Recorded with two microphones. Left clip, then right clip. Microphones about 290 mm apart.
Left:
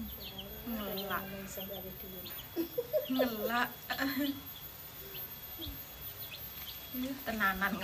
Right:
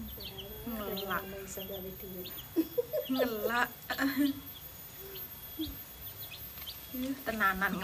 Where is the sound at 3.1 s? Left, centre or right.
Centre.